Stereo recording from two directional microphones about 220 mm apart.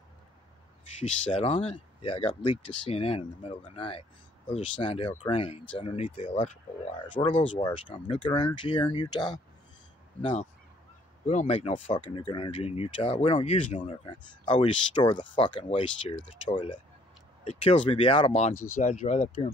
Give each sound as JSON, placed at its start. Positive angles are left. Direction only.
{"t": 1.0, "sound": "speech", "side_deg": 30}
{"t": 11.2, "sound": "speech", "side_deg": 30}